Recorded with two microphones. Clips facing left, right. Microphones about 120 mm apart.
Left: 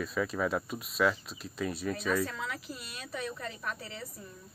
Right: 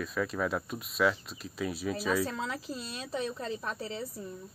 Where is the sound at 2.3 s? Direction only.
30° right (ahead or behind).